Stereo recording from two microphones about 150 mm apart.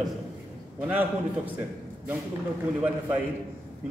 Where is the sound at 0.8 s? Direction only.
10° right (ahead or behind).